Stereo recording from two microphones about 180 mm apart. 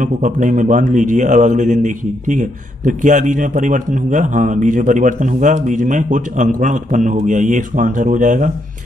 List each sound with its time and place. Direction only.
0.0 s speech: 45° right (ahead or behind)